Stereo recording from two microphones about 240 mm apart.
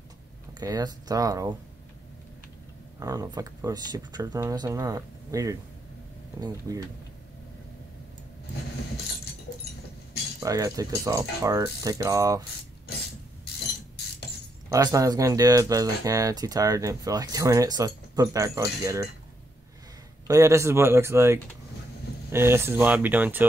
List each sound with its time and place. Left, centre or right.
0.6 s speech: centre
3.0 s speech: centre
10.4 s speech: centre
14.7 s speech: centre
20.2 s speech: centre